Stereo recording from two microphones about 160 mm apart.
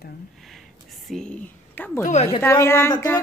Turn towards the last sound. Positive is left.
turn(degrees=15)  # may be behind; listen again after turning